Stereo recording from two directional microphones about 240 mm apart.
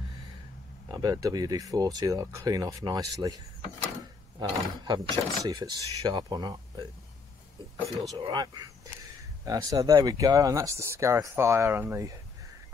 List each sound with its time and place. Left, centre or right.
0.9 s speech: centre
4.4 s speech: centre
8.2 s speech: centre